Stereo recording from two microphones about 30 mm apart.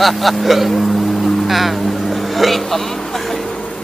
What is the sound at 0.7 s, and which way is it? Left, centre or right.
Music, centre.